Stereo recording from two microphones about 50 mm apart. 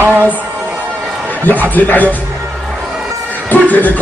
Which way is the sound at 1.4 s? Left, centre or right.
Left.